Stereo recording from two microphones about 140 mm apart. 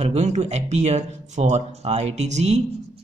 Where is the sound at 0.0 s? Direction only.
55° right (ahead or behind).